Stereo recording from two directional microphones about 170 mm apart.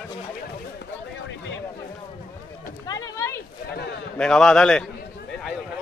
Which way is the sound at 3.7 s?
80° left.